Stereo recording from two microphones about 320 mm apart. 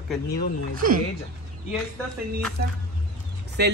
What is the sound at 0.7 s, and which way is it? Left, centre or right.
Speech, right.